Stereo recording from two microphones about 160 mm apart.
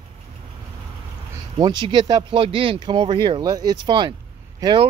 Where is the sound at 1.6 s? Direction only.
30° right (ahead or behind).